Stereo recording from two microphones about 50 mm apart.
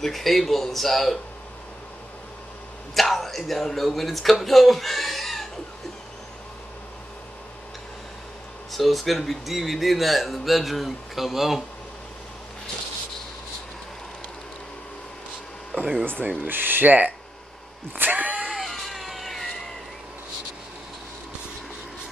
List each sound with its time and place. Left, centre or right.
0.0 s speech: centre
2.9 s speech: centre
8.7 s speech: centre
15.8 s speech: right
17.9 s vehicle: right
18.5 s cat: centre